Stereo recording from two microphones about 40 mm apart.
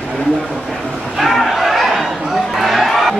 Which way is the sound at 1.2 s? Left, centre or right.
Centre.